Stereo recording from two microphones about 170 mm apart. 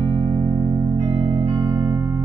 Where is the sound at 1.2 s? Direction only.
25° right (ahead or behind).